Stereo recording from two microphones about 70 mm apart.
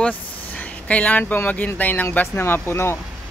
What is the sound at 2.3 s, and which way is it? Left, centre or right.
Speech, left.